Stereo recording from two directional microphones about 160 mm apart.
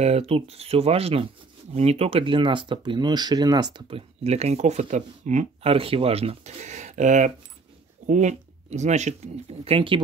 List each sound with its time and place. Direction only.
0.0 s speech: 40° right (ahead or behind)